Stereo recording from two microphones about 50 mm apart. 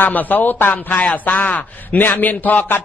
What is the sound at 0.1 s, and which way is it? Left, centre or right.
Speech, left.